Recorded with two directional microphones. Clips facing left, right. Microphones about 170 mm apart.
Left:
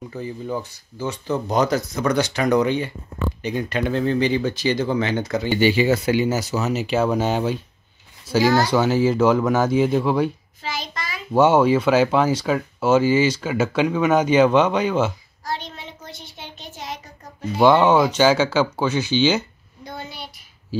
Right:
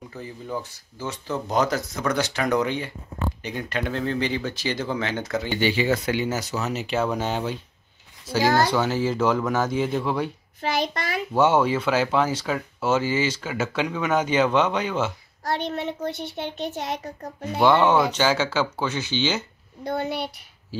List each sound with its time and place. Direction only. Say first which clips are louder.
0.2 s speech: left 4 dB; centre (ahead or behind)
8.7 s speech: left 5 dB; 10° left (ahead or behind)
10.6 s a sound: right 5 dB; 60° right (ahead or behind)
11.3 s speech: left 5 dB; 10° left (ahead or behind)
15.4 s a child's voice: right 5 dB; 65° right (ahead or behind)
17.6 s speech: left 3 dB; 15° left (ahead or behind)
19.8 s a woman's voice: right 8 dB; 60° right (ahead or behind)